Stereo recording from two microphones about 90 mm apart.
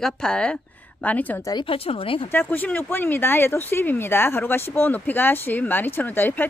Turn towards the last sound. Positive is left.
turn(degrees=20)  # may be behind; listen again after turning